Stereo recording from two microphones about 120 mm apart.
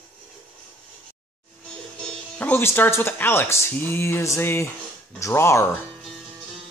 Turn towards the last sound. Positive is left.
turn(degrees=20)  # may be behind; listen again after turning